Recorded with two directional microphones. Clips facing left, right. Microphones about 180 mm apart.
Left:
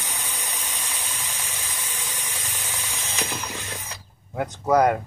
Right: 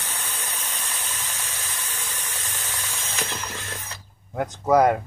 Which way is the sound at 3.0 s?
15° left (ahead or behind).